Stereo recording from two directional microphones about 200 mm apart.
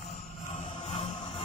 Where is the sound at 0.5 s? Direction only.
30° left (ahead or behind).